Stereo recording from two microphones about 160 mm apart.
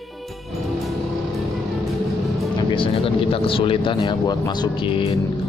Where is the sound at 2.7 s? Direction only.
35° left (ahead or behind).